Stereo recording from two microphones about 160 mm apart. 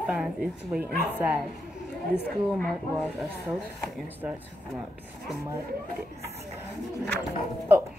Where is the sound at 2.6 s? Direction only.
Centre (ahead or behind).